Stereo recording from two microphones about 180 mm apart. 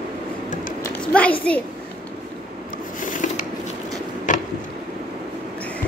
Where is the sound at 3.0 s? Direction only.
45° left (ahead or behind).